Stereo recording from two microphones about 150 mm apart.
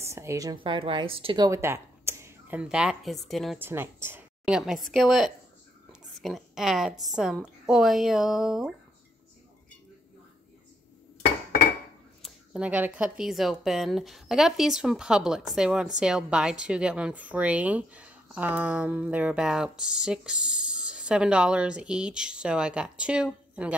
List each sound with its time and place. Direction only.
0.0 s speech: 20° right (ahead or behind); by 3.5 s centre (ahead or behind)
3.5 s speech: 15° right (ahead or behind)
4.5 s a woman's voice: 5° right (ahead or behind)
12.2 s speech: 10° right (ahead or behind)